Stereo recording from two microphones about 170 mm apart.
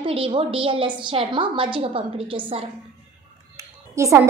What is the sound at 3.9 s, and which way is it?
Speech, 15° right (ahead or behind).